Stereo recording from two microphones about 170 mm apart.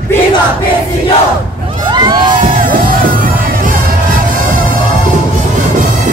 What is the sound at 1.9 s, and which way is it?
Crowd, 25° right (ahead or behind).